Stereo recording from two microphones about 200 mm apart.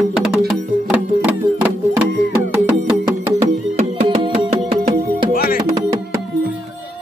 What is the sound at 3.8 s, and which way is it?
Music, 35° right (ahead or behind).